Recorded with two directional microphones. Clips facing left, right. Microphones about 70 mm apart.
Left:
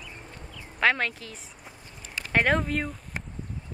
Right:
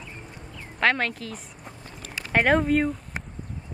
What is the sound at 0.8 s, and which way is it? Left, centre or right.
A woman's voice, centre.